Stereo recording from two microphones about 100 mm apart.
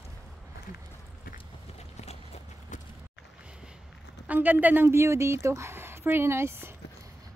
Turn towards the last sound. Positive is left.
turn(degrees=-25)  # may be behind; listen again after turning